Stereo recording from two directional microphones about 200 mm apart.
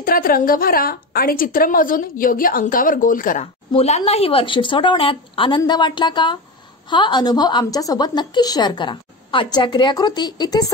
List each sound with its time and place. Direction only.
0.0 s a woman's voice: 45° left (ahead or behind)
3.7 s a woman's voice: 30° left (ahead or behind)